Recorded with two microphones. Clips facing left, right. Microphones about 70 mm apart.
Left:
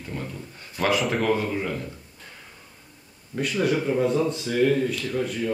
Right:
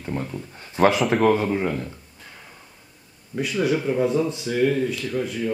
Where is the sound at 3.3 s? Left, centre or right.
Centre.